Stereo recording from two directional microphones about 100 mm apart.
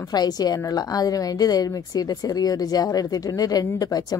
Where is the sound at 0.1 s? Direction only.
40° left (ahead or behind).